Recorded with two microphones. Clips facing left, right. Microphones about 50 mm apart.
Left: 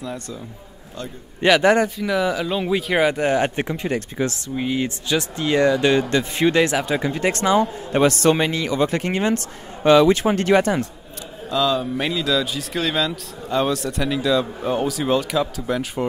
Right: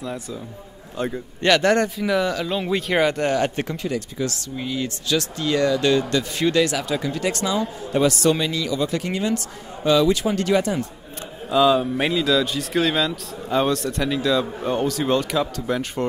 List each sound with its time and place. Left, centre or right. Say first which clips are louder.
0.0 s speech: even; centre
1.4 s speech: left 2 dB; centre
2.0 s speech: even; centre; by 10.8 s left
11.4 s speech: right 3 dB; centre